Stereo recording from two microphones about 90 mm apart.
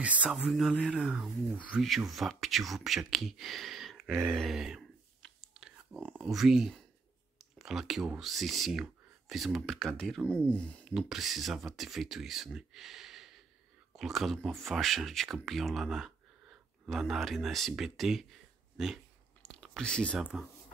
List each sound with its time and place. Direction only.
0.0 s speech: 15° right (ahead or behind)
0.3 s speech: 5° right (ahead or behind)
2.0 s speech: centre (ahead or behind)
5.4 s a sound: 5° right (ahead or behind)
6.1 s speech: centre (ahead or behind)
7.3 s clicking: 5° right (ahead or behind)
8.2 s speech: centre (ahead or behind); by 10.9 s 15° left (ahead or behind)
10.9 s speech: 5° right (ahead or behind)
19.4 s a sound: 5° left (ahead or behind)
20.2 s speech: 10° right (ahead or behind)